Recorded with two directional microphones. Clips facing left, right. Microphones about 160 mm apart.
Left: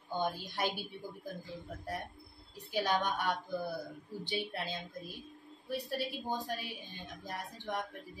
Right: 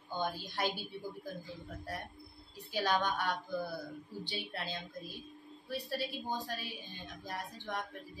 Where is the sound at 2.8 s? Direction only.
20° left (ahead or behind).